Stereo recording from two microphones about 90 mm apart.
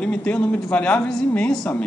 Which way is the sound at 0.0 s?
15° left (ahead or behind).